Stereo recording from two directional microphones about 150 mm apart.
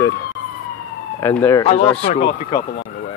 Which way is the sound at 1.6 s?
40° left (ahead or behind).